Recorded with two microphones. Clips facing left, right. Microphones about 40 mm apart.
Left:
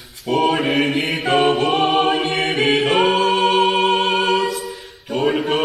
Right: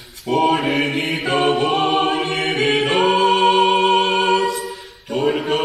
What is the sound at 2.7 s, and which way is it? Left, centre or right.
A capella, centre.